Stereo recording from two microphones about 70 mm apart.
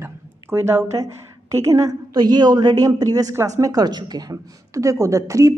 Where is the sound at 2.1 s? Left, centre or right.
Right.